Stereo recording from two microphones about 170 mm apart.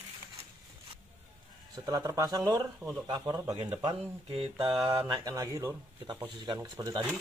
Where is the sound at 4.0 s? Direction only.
35° right (ahead or behind).